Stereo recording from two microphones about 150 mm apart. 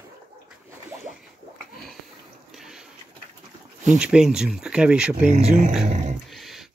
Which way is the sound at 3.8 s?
5° right (ahead or behind).